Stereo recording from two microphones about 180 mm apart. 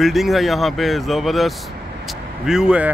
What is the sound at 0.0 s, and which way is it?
Speech, centre (ahead or behind).